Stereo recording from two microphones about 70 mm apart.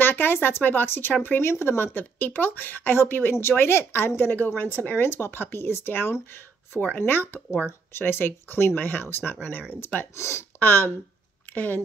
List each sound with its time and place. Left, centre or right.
0.0 s speech: left
10.1 s speech: left
10.6 s speech: left